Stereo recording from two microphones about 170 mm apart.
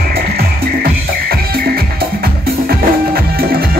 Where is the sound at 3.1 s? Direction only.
60° right (ahead or behind).